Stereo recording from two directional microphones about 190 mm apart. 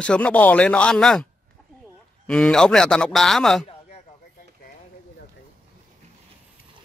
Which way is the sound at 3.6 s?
35° left (ahead or behind).